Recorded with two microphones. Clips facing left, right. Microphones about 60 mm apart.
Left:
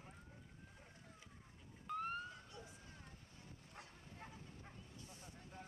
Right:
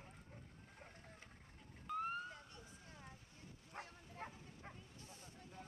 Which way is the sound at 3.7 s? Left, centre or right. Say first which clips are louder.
Right 7 dB; right.